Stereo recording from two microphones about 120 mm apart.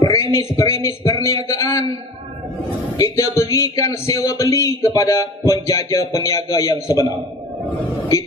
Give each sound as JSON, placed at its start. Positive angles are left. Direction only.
{"t": 0.0, "sound": "a sound", "side_deg": 30}
{"t": 0.6, "sound": "speech", "side_deg": 25}
{"t": 3.0, "sound": "speech", "side_deg": 25}